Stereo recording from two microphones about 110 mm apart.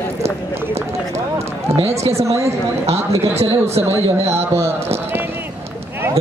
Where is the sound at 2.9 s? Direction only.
70° right (ahead or behind).